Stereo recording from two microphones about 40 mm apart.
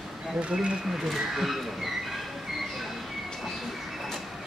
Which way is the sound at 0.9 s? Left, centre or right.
Centre.